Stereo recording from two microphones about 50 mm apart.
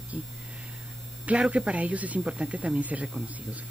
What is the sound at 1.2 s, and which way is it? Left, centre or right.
Speech, right.